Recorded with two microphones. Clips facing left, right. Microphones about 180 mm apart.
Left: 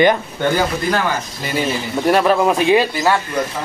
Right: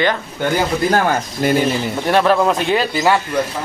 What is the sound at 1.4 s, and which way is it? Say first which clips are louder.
Speech: right 10 dB; 60° right (ahead or behind).